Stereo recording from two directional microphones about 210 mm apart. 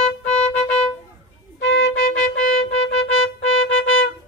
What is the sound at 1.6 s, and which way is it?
Music, 60° left (ahead or behind).